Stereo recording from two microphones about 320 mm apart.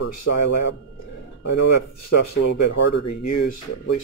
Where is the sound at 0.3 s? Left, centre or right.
Left.